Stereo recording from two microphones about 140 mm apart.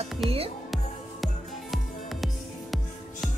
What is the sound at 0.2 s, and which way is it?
Music, centre (ahead or behind).